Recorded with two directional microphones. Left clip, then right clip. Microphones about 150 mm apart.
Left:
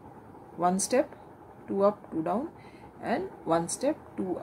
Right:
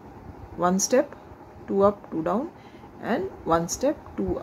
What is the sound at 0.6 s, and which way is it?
A woman's voice, 30° right (ahead or behind).